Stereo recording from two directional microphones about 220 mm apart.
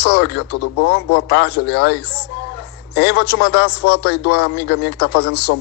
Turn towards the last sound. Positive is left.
turn(degrees=50)  # may be behind; listen again after turning